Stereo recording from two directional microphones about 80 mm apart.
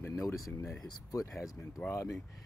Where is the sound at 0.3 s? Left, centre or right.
Left.